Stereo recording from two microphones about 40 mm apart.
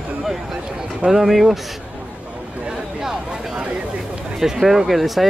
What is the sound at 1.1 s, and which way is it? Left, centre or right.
Speech, centre.